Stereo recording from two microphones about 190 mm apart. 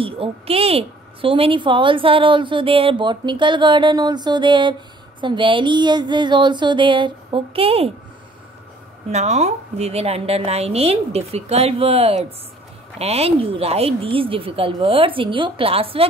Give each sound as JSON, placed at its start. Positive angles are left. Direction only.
{"t": 0.0, "sound": "a woman's voice", "side_deg": -30}
{"t": 9.1, "sound": "a woman's voice", "side_deg": -35}